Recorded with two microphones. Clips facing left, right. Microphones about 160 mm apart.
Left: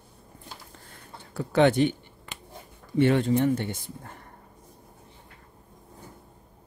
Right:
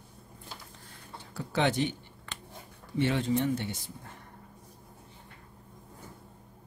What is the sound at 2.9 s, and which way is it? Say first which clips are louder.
Speech: left 6 dB; 55° left (ahead or behind).